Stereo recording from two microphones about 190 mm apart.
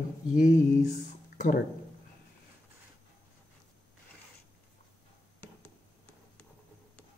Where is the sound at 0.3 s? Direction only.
40° left (ahead or behind).